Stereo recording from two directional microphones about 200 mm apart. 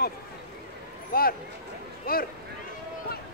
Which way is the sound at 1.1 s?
45° left (ahead or behind).